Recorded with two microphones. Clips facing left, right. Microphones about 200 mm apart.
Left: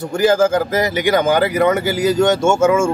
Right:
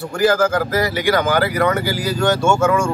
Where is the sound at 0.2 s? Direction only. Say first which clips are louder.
Left 2 dB; 20° left (ahead or behind).